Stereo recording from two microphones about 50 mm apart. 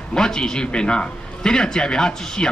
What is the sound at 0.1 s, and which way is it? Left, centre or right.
Speech, centre.